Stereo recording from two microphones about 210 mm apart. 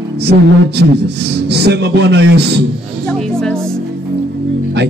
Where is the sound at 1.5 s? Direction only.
50° right (ahead or behind).